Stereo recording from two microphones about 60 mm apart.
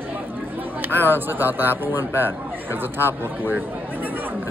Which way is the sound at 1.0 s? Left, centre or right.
Right.